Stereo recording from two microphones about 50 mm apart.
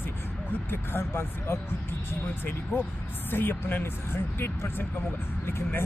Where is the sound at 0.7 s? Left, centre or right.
Left.